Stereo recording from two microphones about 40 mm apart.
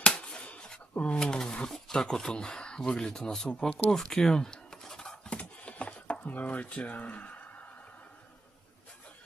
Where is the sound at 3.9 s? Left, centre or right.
Centre.